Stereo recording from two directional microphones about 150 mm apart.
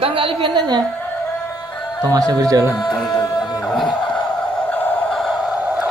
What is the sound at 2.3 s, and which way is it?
Speech, 25° right (ahead or behind).